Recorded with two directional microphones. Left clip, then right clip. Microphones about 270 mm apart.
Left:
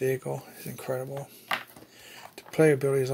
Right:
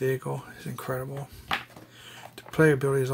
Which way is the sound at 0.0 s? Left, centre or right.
Centre.